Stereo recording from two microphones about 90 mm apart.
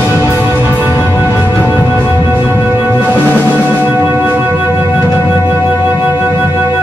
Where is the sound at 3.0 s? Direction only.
20° right (ahead or behind).